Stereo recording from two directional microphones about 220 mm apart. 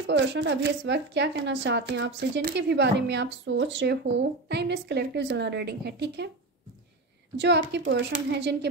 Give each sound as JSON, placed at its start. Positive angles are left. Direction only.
{"t": 0.0, "sound": "speech", "side_deg": -55}
{"t": 7.3, "sound": "speech", "side_deg": -50}